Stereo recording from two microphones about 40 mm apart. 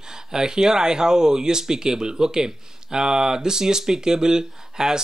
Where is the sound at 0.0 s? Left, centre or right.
Centre.